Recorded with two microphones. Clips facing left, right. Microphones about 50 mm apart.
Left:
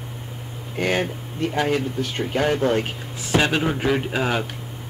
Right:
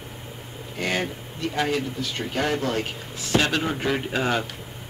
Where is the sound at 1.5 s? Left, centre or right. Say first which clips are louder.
Left 3 dB; left; by 4.4 s centre.